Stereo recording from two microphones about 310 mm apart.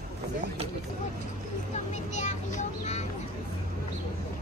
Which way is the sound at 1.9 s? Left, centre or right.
Left.